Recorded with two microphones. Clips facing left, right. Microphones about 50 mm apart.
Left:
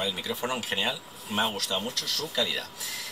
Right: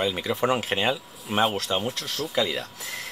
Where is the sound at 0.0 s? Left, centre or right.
Right.